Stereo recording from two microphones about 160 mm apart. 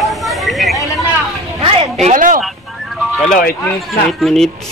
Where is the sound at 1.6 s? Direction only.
35° right (ahead or behind).